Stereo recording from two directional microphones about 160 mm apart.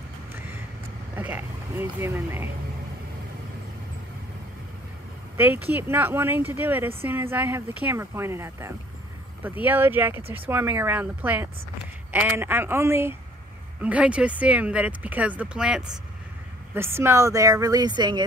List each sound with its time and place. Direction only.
1.1 s speech: 10° right (ahead or behind)
5.4 s speech: 10° right (ahead or behind)